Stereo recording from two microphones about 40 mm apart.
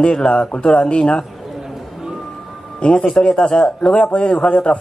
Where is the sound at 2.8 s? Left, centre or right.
Left.